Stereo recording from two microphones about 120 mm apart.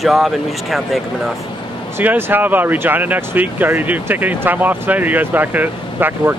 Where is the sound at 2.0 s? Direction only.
20° right (ahead or behind).